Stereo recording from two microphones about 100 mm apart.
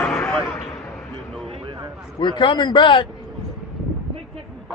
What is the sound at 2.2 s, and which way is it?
Speech, 55° left (ahead or behind).